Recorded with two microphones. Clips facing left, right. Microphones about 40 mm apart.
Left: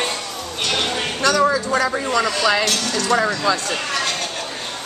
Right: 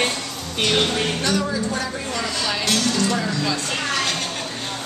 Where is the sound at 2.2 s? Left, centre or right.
Left.